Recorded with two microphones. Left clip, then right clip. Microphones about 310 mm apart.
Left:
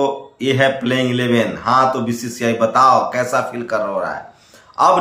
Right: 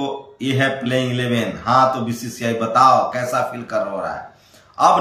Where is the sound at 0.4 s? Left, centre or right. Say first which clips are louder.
Left 4 dB; centre.